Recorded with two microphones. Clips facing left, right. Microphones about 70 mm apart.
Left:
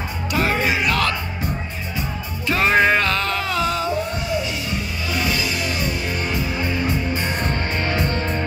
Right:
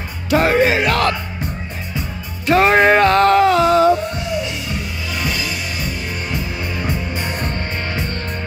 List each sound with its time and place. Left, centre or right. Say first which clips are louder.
0.3 s music: right 7 dB; right
2.5 s music: right 5 dB; right
7.5 s music: left 2 dB; left